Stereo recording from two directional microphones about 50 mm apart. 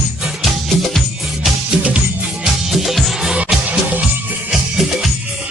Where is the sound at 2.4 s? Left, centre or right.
Centre.